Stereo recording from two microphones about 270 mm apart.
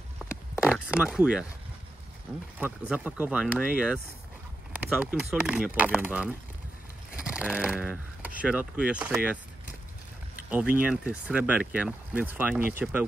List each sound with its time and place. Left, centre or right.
0.7 s speech: centre
2.9 s speech: centre
7.2 s a sound: centre
8.4 s speech: centre
10.5 s speech: centre